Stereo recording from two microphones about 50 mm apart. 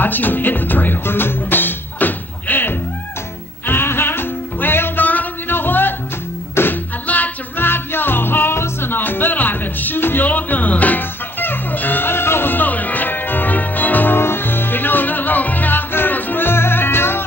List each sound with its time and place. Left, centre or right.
0.0 s music: left